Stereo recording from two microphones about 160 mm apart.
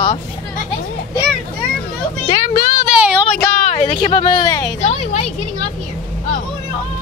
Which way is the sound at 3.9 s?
30° left (ahead or behind).